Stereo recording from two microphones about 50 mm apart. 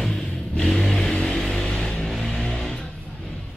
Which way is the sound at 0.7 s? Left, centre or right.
Centre.